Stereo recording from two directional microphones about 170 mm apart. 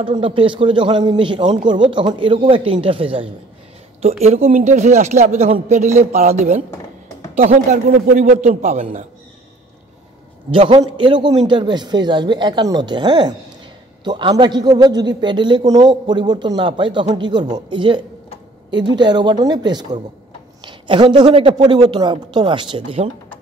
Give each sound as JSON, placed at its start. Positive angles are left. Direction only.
{"t": 0.0, "sound": "a man's voice", "side_deg": -30}
{"t": 10.5, "sound": "a man's voice", "side_deg": -30}